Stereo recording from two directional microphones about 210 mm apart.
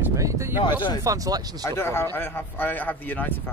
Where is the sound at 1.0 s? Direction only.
15° right (ahead or behind).